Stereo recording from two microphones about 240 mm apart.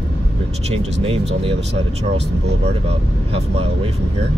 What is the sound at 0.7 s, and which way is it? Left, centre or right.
Speech, right.